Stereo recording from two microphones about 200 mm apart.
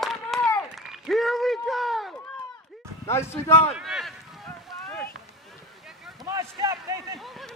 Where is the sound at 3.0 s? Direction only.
10° left (ahead or behind).